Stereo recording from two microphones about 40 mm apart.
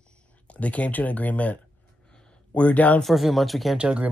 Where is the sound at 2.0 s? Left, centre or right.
Left.